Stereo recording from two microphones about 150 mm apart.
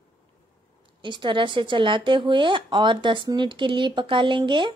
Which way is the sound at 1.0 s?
30° right (ahead or behind).